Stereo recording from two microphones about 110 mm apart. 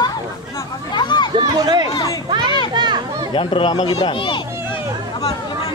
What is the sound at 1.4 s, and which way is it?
Speech, 40° right (ahead or behind).